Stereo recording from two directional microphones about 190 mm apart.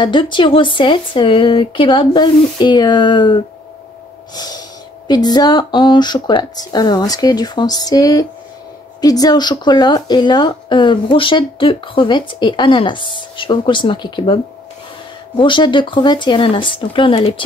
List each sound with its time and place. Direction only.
0.0 s speech: 25° left (ahead or behind)
4.4 s speech: 20° left (ahead or behind)